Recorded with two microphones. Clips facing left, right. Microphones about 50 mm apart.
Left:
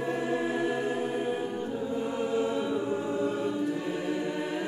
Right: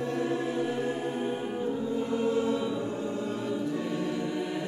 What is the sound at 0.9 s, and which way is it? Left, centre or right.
Music, centre.